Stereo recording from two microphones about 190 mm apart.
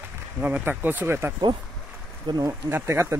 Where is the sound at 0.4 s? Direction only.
10° right (ahead or behind).